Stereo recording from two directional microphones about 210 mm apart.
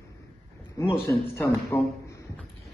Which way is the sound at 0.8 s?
15° left (ahead or behind).